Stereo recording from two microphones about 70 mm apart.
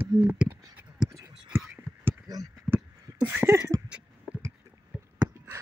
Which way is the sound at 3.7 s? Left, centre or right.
Right.